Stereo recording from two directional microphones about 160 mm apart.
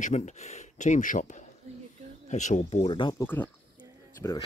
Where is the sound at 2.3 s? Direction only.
45° left (ahead or behind).